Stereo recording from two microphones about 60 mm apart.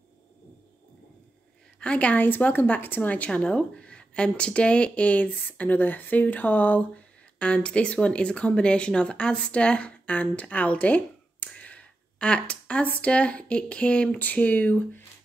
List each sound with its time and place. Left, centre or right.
1.8 s speech: left
3.3 s speech: centre
7.3 s speech: centre